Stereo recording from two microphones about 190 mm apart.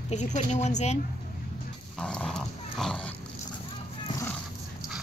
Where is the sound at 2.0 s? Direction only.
5° left (ahead or behind).